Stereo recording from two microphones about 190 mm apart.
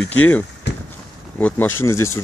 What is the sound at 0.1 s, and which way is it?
Speech, 10° left (ahead or behind).